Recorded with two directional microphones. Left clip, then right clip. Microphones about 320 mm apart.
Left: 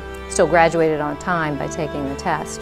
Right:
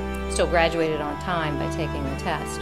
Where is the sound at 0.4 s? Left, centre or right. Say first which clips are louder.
Left 7 dB; left.